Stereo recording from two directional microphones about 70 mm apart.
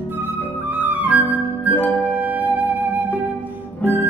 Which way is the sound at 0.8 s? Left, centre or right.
Right.